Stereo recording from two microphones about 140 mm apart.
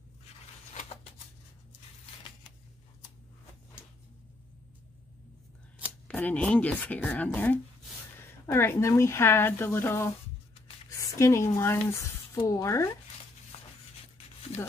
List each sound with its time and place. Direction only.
6.0 s speech: 10° left (ahead or behind)